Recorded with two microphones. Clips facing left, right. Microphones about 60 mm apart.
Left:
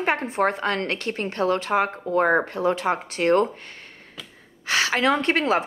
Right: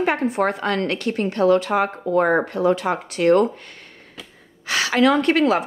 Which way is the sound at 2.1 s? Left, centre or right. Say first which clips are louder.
Right 2 dB; right.